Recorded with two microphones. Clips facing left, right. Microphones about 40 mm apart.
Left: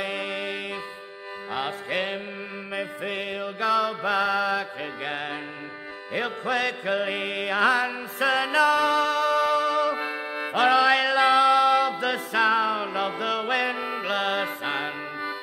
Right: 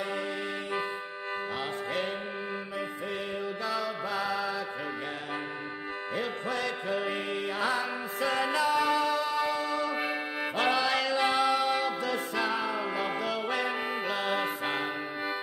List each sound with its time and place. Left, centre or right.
0.0 s music: left
1.5 s music: left
6.1 s music: left
7.3 s music: left
9.9 s music: centre
10.6 s music: left
12.9 s music: left
13.7 s music: centre
14.0 s music: left
14.4 s music: left